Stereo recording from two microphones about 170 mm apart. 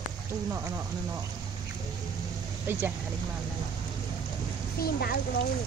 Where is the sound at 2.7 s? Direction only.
10° right (ahead or behind).